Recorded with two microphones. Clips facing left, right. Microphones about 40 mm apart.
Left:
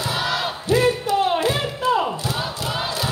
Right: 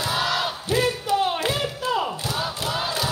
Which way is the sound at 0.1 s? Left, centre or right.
Centre.